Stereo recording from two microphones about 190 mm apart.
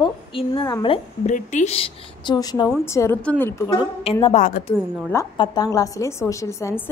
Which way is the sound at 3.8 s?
25° left (ahead or behind).